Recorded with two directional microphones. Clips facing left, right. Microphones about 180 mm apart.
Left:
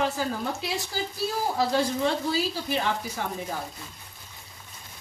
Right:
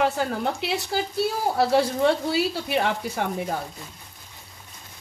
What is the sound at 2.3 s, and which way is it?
Speech, 65° right (ahead or behind).